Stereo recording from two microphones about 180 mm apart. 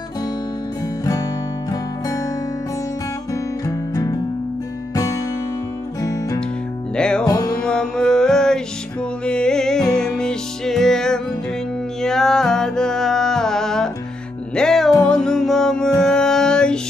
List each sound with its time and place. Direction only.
1.7 s music: 20° left (ahead or behind)
3.6 s music: 20° left (ahead or behind)
7.0 s music: 5° left (ahead or behind)